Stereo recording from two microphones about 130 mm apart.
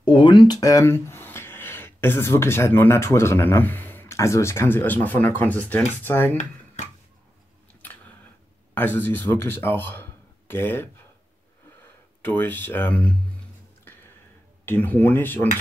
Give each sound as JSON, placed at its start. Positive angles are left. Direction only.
{"t": 0.0, "sound": "speech", "side_deg": 40}
{"t": 8.7, "sound": "speech", "side_deg": 15}
{"t": 12.2, "sound": "speech", "side_deg": 15}
{"t": 14.6, "sound": "speech", "side_deg": 15}